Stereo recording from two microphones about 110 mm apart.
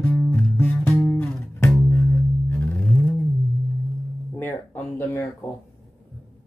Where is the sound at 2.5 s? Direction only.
15° left (ahead or behind).